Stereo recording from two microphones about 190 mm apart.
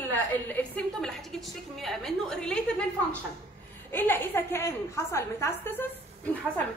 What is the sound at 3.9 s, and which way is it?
A woman's voice, 10° left (ahead or behind).